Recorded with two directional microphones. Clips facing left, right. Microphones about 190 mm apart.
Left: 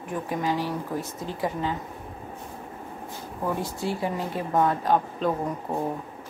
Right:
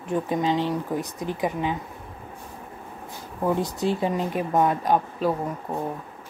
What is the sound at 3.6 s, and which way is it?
Speech, 20° right (ahead or behind).